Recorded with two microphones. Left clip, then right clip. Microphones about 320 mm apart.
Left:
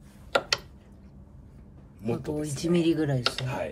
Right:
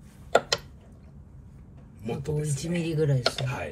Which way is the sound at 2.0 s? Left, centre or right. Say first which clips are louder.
Left 1 dB; left.